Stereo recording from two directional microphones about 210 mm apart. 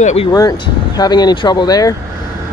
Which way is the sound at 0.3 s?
20° left (ahead or behind).